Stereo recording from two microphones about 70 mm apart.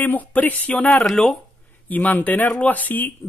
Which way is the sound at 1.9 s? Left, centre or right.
Left.